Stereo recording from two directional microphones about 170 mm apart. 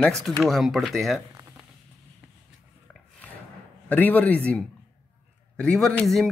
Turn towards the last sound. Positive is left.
turn(degrees=0)  # may be behind; listen again after turning